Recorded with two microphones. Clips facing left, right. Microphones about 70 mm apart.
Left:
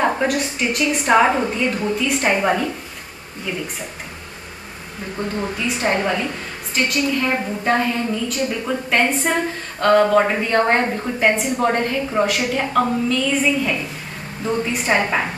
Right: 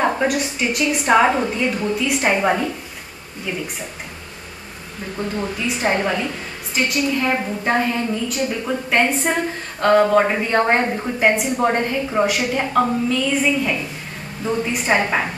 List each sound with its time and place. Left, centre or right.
0.0 s a woman's voice: centre
5.4 s a woman's voice: centre